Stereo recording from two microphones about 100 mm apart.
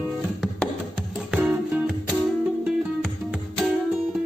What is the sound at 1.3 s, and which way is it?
Music, 10° right (ahead or behind).